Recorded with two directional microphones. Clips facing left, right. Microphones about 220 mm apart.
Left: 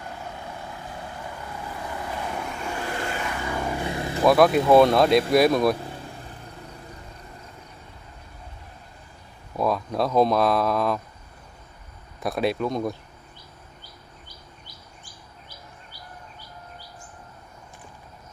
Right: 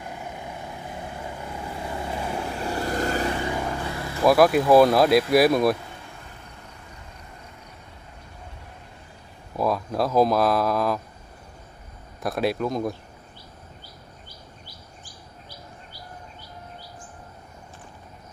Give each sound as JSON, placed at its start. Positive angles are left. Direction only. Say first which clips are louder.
{"t": 0.0, "sound": "vehicle", "louder": "right 1 dB", "side_deg": -10}
{"t": 2.4, "sound": "vehicle", "louder": "right 3 dB", "side_deg": -35}
{"t": 3.6, "sound": "vehicle", "louder": "left 2 dB", "side_deg": 15}
{"t": 4.2, "sound": "speech", "louder": "even", "side_deg": 0}
{"t": 9.6, "sound": "speech", "louder": "even", "side_deg": 0}
{"t": 12.2, "sound": "speech", "louder": "even", "side_deg": 0}